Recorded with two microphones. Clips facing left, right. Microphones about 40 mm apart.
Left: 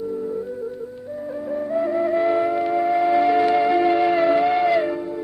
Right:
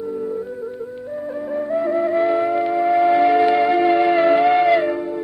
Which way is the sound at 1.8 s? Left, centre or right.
Centre.